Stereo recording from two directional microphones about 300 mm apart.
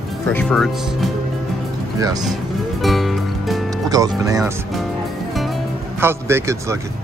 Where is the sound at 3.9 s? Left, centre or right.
Centre.